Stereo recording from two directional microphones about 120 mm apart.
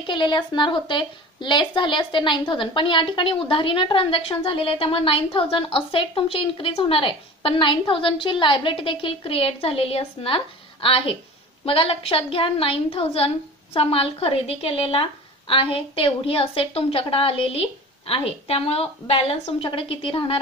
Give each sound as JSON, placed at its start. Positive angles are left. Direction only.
{"t": 0.0, "sound": "a woman's voice", "side_deg": 40}